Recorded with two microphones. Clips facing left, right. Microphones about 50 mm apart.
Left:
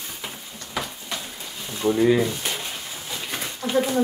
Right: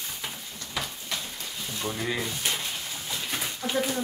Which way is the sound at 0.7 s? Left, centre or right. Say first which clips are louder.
Left 3 dB; centre.